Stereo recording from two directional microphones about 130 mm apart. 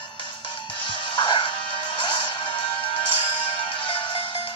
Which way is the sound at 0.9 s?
40° left (ahead or behind).